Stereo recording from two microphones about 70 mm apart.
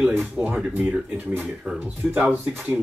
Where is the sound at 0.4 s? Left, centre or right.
Centre.